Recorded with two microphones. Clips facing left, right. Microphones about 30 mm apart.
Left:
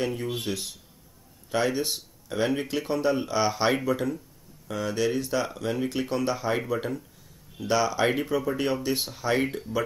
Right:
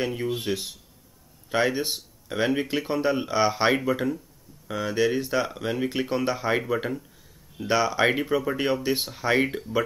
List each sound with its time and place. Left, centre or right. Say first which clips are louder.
0.0 s speech: right 2 dB; centre